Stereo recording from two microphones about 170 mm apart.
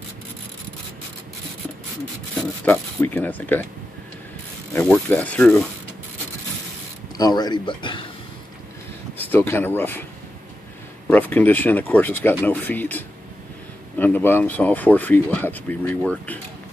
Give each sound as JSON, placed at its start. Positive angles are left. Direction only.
{"t": 2.6, "sound": "speech", "side_deg": 10}
{"t": 5.1, "sound": "speech", "side_deg": 10}
{"t": 7.2, "sound": "speech", "side_deg": 25}
{"t": 9.2, "sound": "speech", "side_deg": 10}
{"t": 11.1, "sound": "speech", "side_deg": 10}